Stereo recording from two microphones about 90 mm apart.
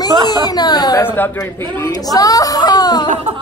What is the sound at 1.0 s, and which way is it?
Speech, 20° left (ahead or behind).